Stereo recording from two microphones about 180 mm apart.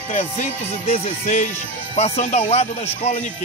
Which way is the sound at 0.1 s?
40° left (ahead or behind).